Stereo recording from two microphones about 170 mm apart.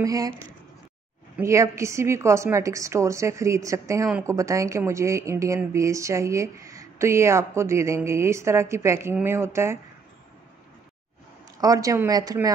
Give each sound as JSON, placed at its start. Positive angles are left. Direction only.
{"t": 0.0, "sound": "speech", "side_deg": -20}
{"t": 1.4, "sound": "a woman's voice", "side_deg": -15}
{"t": 11.6, "sound": "speech", "side_deg": -20}